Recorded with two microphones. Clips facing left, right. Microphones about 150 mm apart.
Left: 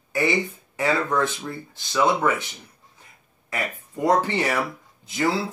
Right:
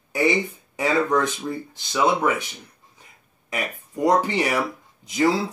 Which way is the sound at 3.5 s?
15° right (ahead or behind).